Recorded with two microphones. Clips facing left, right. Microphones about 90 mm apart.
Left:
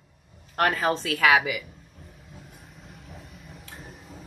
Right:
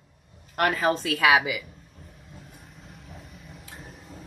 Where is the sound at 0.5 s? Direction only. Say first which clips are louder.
Even; 40° left (ahead or behind).